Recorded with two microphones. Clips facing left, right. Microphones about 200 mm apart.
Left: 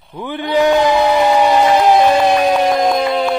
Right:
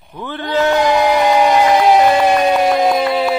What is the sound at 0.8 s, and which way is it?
Music, 10° right (ahead or behind).